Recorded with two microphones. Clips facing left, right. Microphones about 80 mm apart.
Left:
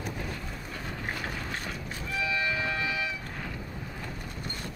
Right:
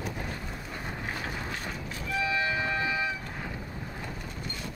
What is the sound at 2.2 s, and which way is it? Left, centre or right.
Music, right.